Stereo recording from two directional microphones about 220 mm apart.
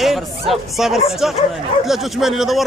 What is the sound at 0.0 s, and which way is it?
Bow-wow, centre (ahead or behind).